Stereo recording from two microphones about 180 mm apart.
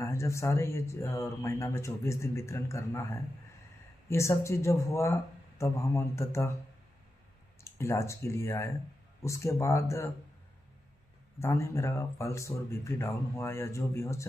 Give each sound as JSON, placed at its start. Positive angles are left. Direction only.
{"t": 0.0, "sound": "speech", "side_deg": 15}
{"t": 7.6, "sound": "speech", "side_deg": 15}
{"t": 11.3, "sound": "speech", "side_deg": 15}